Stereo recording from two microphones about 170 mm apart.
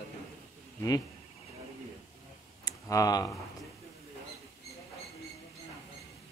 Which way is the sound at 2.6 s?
20° left (ahead or behind).